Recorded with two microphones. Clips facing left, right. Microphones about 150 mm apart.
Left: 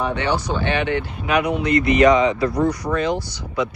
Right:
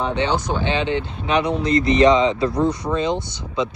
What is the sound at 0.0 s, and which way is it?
Speech, 20° right (ahead or behind).